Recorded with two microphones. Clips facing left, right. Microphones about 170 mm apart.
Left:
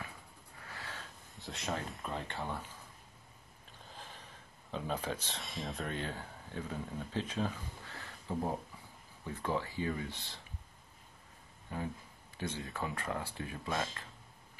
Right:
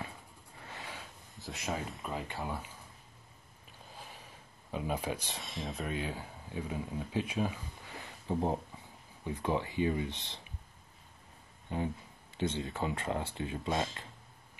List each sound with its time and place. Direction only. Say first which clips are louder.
0.7 s a sound: right 2 dB; 15° right (ahead or behind)
1.3 s speech: right 1 dB; centre (ahead or behind)
3.9 s a sound: right 1 dB; 10° right (ahead or behind)
4.6 s speech: right 2 dB; 10° right (ahead or behind)
5.4 s speech: right 1 dB; centre (ahead or behind); by 10.4 s 20° right (ahead or behind)
11.7 s speech: right 5 dB; 20° right (ahead or behind)